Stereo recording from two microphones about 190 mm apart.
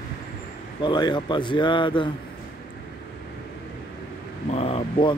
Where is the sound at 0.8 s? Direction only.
25° left (ahead or behind).